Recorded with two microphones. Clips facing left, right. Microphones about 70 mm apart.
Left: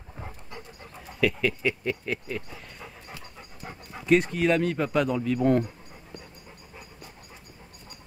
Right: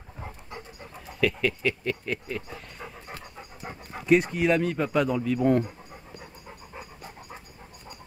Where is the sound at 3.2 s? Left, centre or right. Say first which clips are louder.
Right 2 dB; centre.